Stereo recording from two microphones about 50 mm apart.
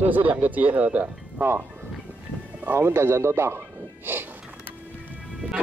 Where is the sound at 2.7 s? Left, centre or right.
Right.